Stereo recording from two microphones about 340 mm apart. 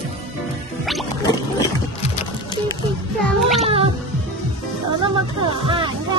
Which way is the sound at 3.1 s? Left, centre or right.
Centre.